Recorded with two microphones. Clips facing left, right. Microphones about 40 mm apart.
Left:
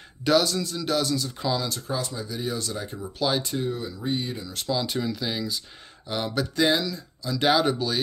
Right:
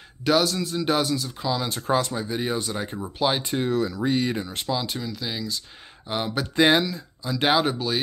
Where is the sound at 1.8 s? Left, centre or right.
Right.